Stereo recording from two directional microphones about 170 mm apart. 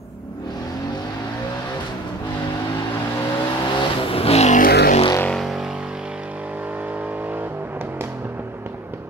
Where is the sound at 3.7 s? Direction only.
35° left (ahead or behind).